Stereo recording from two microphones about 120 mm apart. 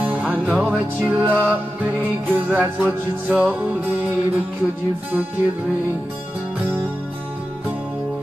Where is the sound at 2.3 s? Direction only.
15° right (ahead or behind).